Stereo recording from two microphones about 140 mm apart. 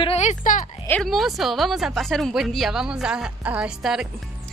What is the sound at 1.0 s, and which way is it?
A woman's voice, centre (ahead or behind).